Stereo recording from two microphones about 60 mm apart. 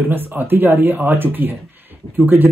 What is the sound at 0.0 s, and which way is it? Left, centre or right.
Speech, right.